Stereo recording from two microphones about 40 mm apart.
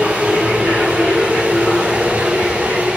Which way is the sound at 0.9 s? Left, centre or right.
Right.